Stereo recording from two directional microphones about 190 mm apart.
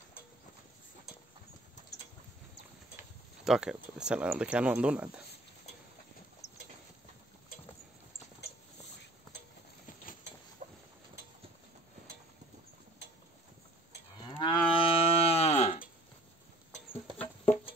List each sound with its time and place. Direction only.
3.4 s speech: 5° right (ahead or behind)
10.6 s a sound: 40° right (ahead or behind)
14.3 s moo: 25° left (ahead or behind)